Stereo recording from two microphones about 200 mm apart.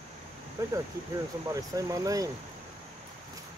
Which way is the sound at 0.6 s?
15° right (ahead or behind).